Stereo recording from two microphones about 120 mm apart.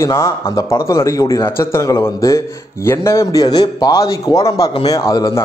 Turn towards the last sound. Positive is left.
turn(degrees=30)  # may be behind; listen again after turning